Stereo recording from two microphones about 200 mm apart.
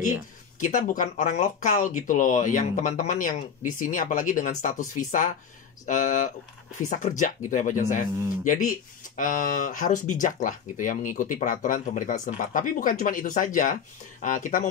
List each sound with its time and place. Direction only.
0.6 s speech: 40° left (ahead or behind)